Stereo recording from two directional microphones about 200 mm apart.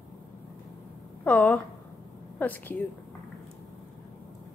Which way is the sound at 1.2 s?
10° left (ahead or behind).